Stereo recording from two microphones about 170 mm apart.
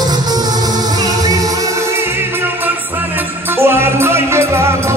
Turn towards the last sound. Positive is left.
turn(degrees=-15)  # may be behind; listen again after turning